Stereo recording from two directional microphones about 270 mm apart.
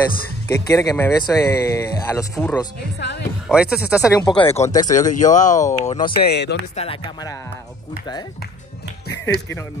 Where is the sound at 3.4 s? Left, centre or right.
Centre.